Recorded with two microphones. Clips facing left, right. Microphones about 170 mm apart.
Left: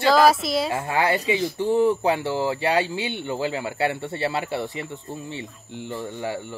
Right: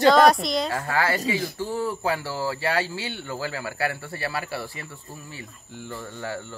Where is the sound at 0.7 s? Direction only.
20° left (ahead or behind).